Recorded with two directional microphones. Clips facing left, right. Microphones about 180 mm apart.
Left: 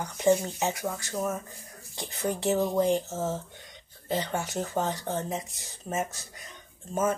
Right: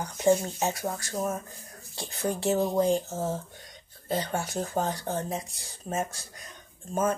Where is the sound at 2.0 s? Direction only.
20° left (ahead or behind).